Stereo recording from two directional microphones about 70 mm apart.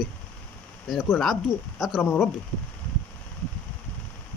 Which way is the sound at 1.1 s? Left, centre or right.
Centre.